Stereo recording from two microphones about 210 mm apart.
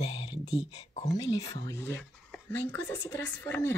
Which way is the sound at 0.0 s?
30° left (ahead or behind).